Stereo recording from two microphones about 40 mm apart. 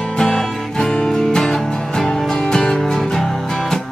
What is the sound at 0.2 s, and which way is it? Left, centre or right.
Music, centre.